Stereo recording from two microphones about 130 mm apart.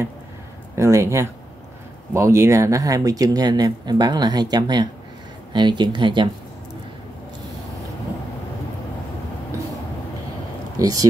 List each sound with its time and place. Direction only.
0.7 s speech: 20° right (ahead or behind); by 6.2 s 40° right (ahead or behind)
10.8 s speech: 25° right (ahead or behind)